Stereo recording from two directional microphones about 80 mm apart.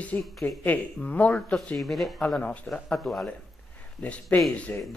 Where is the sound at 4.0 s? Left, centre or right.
Centre.